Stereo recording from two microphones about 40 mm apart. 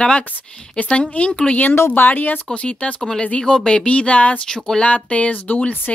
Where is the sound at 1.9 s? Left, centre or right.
Left.